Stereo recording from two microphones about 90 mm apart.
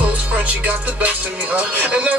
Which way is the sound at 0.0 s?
15° right (ahead or behind).